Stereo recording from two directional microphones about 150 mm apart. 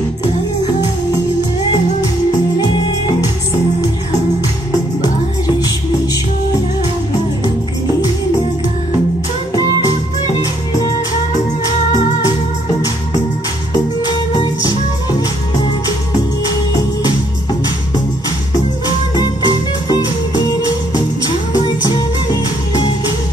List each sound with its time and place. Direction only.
14.1 s music: 30° left (ahead or behind)
19.1 s music: 25° left (ahead or behind)
21.8 s music: 25° left (ahead or behind)